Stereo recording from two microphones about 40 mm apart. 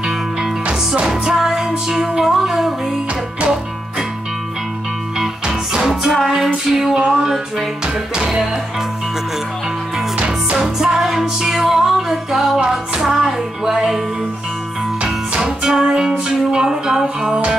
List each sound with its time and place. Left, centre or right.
0.0 s music: centre
5.7 s music: centre
7.0 s music: centre
7.2 s music: centre
10.1 s music: right
10.6 s music: centre
15.3 s music: centre